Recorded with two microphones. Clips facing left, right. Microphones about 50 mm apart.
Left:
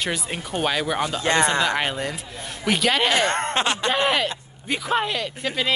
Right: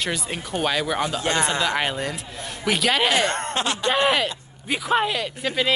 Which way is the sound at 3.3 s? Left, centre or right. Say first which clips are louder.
Left 3 dB; left.